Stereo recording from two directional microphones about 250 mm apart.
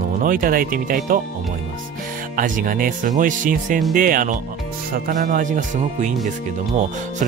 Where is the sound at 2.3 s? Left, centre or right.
Right.